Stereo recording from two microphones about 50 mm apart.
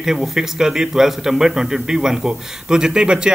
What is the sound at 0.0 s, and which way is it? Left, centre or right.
A man's voice, centre.